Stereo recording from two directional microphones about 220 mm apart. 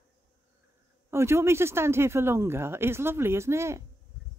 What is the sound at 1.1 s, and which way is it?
Speech, 10° right (ahead or behind).